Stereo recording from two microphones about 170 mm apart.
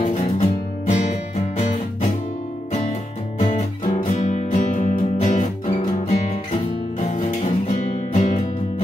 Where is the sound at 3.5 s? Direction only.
50° left (ahead or behind).